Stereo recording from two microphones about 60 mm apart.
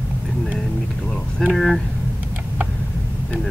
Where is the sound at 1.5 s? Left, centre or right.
Centre.